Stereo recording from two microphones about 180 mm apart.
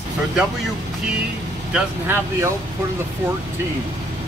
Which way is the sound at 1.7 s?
10° right (ahead or behind).